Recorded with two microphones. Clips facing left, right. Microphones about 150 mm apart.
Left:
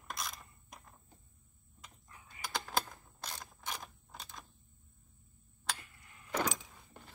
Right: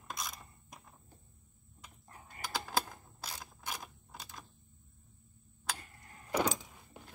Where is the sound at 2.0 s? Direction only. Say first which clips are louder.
Right 4 dB; 45° right (ahead or behind).